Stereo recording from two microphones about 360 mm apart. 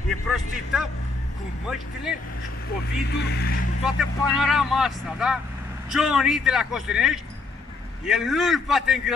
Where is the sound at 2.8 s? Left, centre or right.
Left.